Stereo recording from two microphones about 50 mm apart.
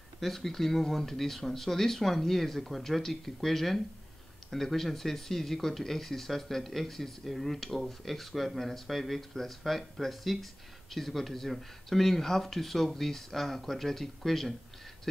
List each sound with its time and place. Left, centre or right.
0.2 s speech: centre